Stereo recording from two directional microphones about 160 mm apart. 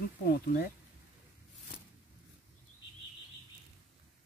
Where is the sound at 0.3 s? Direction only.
75° left (ahead or behind).